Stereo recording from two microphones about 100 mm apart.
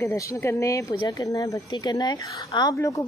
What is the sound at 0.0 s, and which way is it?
A woman's voice, 30° left (ahead or behind).